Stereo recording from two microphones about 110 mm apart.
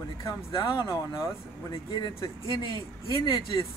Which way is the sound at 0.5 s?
35° left (ahead or behind).